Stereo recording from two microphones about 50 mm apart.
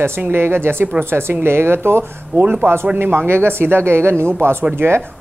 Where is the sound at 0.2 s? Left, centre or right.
Right.